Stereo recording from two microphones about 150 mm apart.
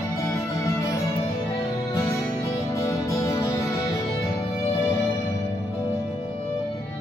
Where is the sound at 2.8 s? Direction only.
20° left (ahead or behind).